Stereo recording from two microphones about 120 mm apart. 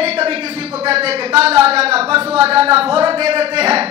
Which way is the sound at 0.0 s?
55° right (ahead or behind).